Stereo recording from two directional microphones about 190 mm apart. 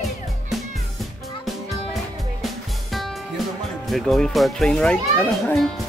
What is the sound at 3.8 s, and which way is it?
A child's voice, centre (ahead or behind).